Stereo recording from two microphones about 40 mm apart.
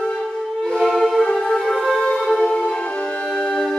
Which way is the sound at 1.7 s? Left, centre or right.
Centre.